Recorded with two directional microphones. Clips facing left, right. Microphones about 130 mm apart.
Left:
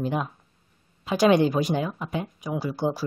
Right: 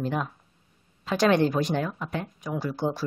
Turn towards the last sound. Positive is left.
turn(degrees=5)  # may be behind; listen again after turning